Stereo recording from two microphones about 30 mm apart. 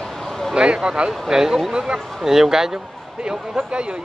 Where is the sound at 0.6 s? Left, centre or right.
Right.